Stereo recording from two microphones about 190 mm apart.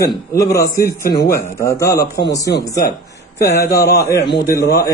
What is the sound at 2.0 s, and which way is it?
Speech, 60° left (ahead or behind).